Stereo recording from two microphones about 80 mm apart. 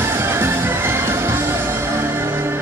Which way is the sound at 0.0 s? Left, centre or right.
Right.